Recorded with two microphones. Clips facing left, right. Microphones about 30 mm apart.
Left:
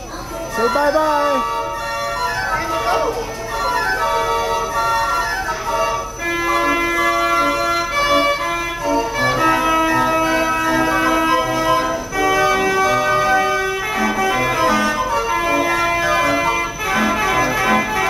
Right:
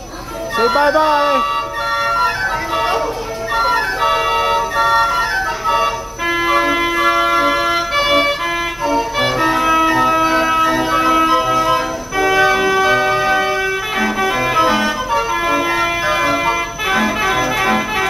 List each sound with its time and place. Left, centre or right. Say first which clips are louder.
0.6 s speech: right 3 dB; right
3.6 s organ: right 1 dB; right
6.4 s music: right 2 dB; right
9.4 s music: right 2 dB; centre
9.8 s a sound: right 3 dB; centre
11.0 s music: right 3 dB; centre
12.2 s vehicle: right 3 dB; right
12.8 s music: right 2 dB; right
17.6 s organ: even; centre